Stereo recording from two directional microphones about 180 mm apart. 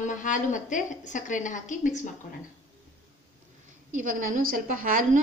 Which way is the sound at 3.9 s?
45° right (ahead or behind).